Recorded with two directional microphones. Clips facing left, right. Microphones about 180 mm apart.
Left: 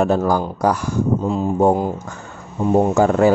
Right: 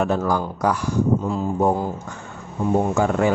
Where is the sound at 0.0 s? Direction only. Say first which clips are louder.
Left 4 dB; 35° left (ahead or behind).